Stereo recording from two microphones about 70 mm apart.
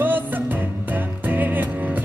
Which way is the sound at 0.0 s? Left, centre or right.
Right.